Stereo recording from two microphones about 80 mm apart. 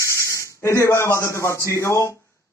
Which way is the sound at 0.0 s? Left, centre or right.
Left.